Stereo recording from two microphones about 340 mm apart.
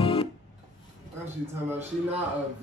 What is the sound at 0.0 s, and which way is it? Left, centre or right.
Music, centre.